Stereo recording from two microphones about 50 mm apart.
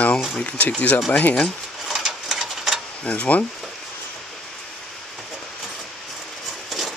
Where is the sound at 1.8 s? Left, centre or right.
Centre.